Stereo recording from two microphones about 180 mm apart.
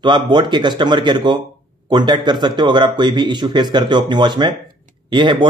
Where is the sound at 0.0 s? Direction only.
25° right (ahead or behind).